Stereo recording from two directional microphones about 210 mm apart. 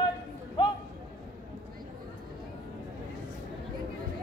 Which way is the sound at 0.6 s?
25° left (ahead or behind).